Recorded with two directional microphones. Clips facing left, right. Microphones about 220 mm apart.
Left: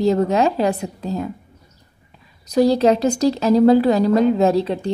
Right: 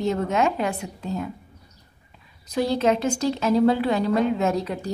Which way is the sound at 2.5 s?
40° left (ahead or behind).